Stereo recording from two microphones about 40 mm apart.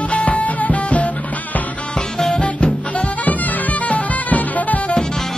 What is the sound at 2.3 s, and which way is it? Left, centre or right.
Music, left.